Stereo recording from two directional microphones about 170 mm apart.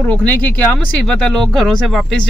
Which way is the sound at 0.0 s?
10° left (ahead or behind).